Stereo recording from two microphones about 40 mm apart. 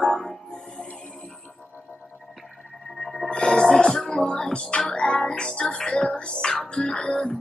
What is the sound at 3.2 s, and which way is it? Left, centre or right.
Music, left.